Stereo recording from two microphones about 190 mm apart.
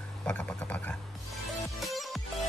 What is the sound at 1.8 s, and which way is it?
Music, centre (ahead or behind).